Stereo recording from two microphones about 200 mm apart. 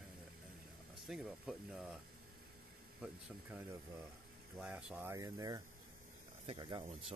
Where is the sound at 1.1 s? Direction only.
Centre (ahead or behind).